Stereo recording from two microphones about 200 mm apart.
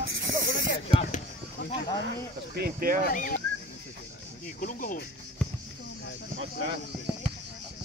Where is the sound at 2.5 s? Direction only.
50° right (ahead or behind).